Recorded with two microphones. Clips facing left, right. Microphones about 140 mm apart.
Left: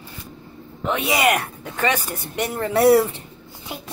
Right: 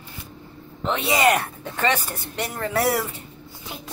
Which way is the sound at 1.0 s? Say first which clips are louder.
Right 1 dB; 15° left (ahead or behind).